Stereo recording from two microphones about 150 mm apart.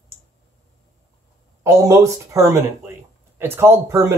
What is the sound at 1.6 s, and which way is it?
Speech, 20° right (ahead or behind).